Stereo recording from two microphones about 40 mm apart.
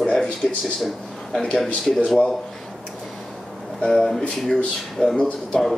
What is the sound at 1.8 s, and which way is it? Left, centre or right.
Speech, centre.